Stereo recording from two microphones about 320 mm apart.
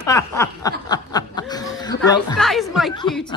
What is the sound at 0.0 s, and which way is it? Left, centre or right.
Snicker, centre.